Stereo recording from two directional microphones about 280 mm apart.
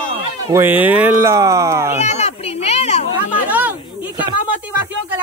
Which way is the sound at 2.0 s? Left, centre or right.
Left.